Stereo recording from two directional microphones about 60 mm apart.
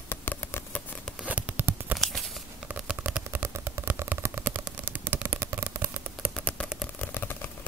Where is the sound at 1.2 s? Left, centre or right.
Right.